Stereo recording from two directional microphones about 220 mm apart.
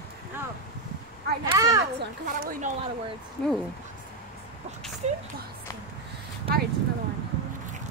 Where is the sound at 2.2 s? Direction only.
40° right (ahead or behind).